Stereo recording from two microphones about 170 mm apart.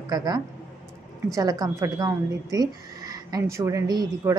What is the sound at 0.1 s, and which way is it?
Speech, 25° right (ahead or behind).